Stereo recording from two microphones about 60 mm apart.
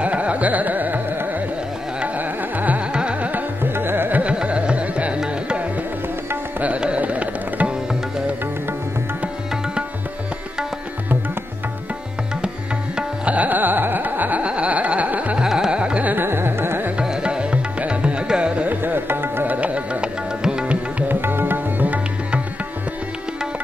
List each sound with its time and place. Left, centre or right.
0.0 s carnatic music: right
2.1 s carnatic music: right
2.9 s music: centre
3.7 s music: right
4.2 s carnatic music: centre
6.6 s music: right
12.9 s music: right
15.4 s carnatic music: centre; by 16.3 s right
16.3 s carnatic music: right
17.0 s music: centre
18.7 s music: right; by 20.7 s centre
21.1 s music: right